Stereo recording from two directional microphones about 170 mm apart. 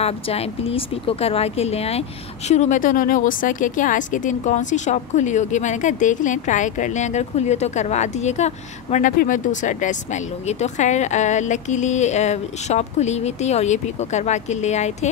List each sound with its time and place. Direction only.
0.0 s speech: 35° left (ahead or behind)